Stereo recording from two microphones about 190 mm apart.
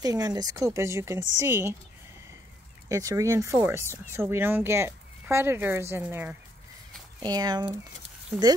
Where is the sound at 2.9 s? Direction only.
15° right (ahead or behind).